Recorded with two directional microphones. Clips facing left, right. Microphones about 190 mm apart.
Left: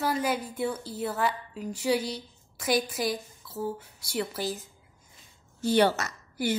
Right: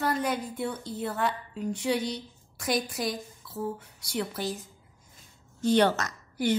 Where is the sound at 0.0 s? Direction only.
5° left (ahead or behind).